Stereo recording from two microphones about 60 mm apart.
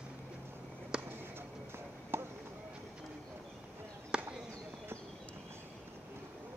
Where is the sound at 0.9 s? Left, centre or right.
Centre.